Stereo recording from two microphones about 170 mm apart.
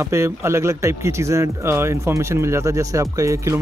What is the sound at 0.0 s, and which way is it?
Speech, 15° right (ahead or behind).